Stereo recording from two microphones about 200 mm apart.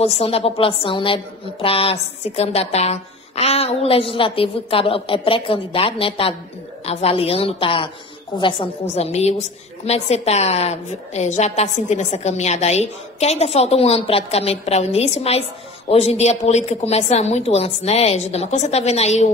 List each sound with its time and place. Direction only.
0.0 s a woman's voice: 30° left (ahead or behind)